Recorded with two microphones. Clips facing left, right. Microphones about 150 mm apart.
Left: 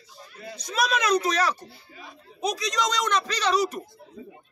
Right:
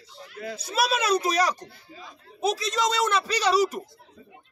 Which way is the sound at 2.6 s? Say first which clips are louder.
Right 2 dB; centre (ahead or behind).